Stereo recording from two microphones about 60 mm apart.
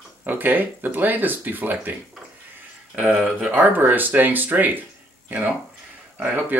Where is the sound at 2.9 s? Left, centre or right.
Right.